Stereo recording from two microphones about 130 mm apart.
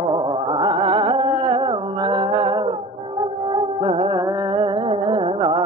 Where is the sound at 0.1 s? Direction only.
40° right (ahead or behind).